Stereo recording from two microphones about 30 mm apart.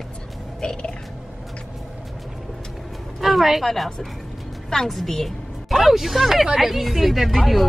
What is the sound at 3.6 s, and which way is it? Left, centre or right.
Speech, centre.